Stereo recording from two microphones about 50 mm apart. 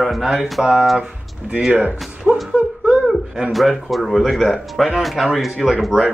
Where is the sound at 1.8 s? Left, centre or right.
Right.